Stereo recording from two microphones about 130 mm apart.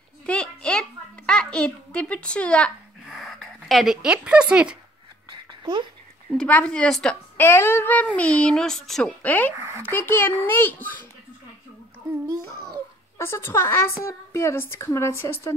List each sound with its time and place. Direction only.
0.3 s a sound: 5° left (ahead or behind)
3.1 s speech: centre (ahead or behind)
5.6 s speech: 35° right (ahead or behind)
6.3 s speech: 5° left (ahead or behind)
7.3 s speech: 20° left (ahead or behind)
9.6 s speech: 20° right (ahead or behind)
9.8 s speech: 20° left (ahead or behind)
13.2 s a woman's voice: 20° left (ahead or behind)